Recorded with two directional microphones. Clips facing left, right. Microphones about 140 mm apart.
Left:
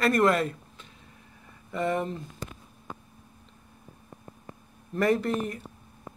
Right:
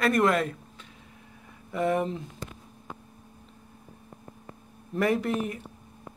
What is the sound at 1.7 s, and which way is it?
Speech, 5° right (ahead or behind).